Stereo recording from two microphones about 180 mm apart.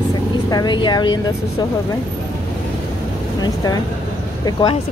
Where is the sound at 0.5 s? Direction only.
25° left (ahead or behind).